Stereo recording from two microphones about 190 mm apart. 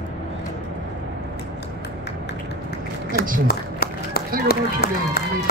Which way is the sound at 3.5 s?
55° left (ahead or behind).